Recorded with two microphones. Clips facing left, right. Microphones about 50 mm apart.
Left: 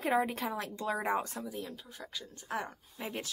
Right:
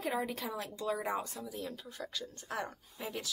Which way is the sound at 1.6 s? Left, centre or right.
Centre.